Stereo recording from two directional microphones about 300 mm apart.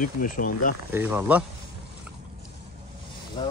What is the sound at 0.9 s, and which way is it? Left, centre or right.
Speech, centre.